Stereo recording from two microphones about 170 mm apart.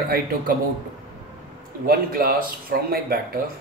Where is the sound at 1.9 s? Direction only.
60° right (ahead or behind).